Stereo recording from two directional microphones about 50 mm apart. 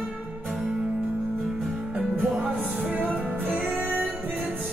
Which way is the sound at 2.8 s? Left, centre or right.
Right.